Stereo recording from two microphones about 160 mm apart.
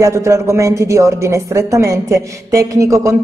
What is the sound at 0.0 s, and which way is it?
A woman's voice, 20° right (ahead or behind).